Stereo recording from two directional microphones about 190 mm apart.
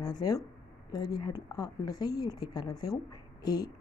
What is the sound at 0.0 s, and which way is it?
Speech, 20° left (ahead or behind).